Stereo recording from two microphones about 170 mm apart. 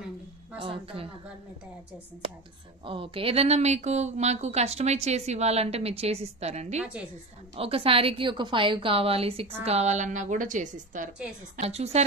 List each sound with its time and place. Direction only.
0.6 s speech: 35° right (ahead or behind)
2.8 s speech: 30° right (ahead or behind)
6.8 s a woman's voice: 5° right (ahead or behind)
7.5 s a woman's voice: 35° right (ahead or behind)